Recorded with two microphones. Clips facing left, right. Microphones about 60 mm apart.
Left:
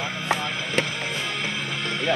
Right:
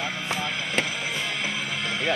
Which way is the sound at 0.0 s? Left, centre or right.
Centre.